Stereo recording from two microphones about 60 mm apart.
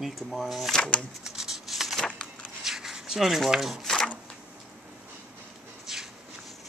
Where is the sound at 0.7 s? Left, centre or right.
Centre.